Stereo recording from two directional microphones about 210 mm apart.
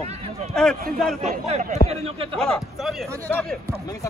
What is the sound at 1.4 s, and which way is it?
Speech, 30° right (ahead or behind).